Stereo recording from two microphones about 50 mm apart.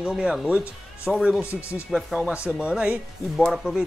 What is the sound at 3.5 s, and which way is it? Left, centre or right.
Speech, centre.